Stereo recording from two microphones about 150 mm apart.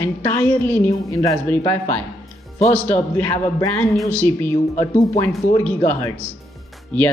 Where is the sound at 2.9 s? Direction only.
15° left (ahead or behind).